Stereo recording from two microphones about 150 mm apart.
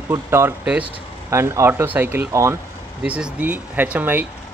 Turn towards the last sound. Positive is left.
turn(degrees=-10)  # may be behind; listen again after turning